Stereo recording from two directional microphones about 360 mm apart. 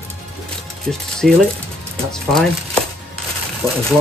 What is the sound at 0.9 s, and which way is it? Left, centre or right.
Speech, centre.